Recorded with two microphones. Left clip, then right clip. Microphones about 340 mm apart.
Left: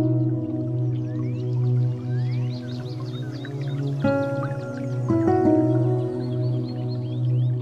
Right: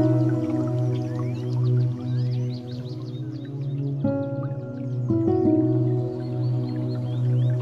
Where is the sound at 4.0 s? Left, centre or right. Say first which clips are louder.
Left 5 dB; left.